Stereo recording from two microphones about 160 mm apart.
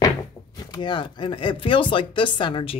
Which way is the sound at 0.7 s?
30° left (ahead or behind).